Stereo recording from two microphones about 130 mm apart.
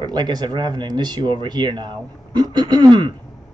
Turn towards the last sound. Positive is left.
turn(degrees=-35)  # may be behind; listen again after turning